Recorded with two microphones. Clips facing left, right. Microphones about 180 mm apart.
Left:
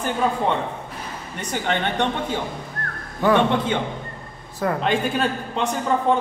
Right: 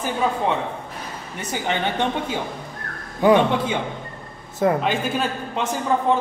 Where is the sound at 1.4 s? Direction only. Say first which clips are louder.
Even; 5° right (ahead or behind).